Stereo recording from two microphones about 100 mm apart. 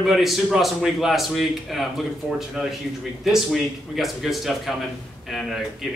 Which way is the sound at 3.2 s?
Centre (ahead or behind).